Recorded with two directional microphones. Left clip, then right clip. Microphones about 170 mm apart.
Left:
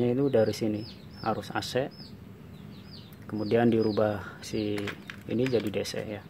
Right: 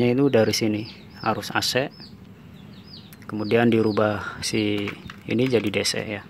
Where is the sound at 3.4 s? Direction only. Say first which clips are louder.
Right 5 dB; 10° right (ahead or behind).